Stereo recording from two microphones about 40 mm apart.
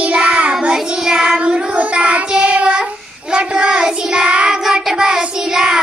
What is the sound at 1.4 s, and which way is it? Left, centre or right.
Child singing, right.